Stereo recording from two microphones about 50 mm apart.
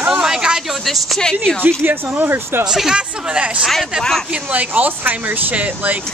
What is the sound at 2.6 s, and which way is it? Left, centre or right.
Speech, centre.